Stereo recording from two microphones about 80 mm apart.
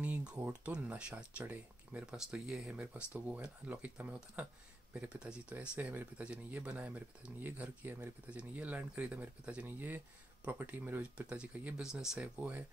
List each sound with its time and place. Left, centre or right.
0.0 s a sound: centre
0.4 s speech: centre
2.0 s speech: centre
12.4 s speech: centre